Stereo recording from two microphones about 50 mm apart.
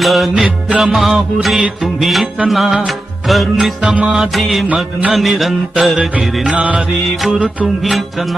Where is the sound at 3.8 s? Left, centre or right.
Right.